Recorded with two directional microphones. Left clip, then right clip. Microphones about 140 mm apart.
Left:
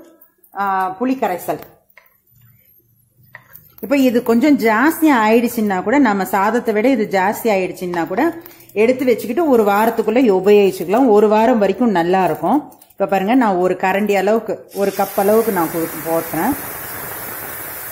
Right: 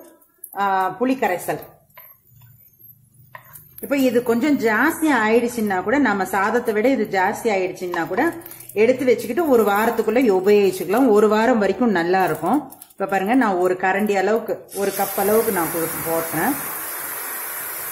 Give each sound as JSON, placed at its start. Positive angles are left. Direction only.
{"t": 0.6, "sound": "a woman's voice", "side_deg": 20}
{"t": 3.9, "sound": "a woman's voice", "side_deg": 40}